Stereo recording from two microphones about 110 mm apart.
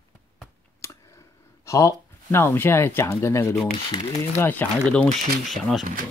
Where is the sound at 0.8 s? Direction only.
25° left (ahead or behind).